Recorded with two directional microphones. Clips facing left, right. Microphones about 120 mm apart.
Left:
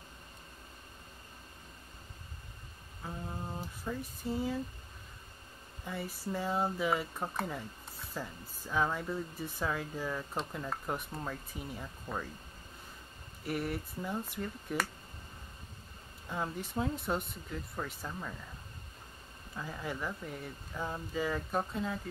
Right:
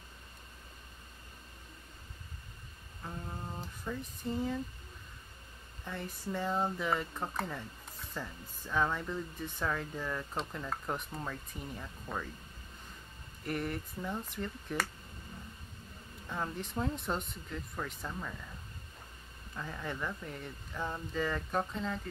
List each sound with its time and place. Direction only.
3.0 s a sound: 5° left (ahead or behind)
5.9 s speech: 5° left (ahead or behind)
13.4 s speech: 5° left (ahead or behind)
16.3 s speech: 5° left (ahead or behind)
19.5 s speech: 10° left (ahead or behind)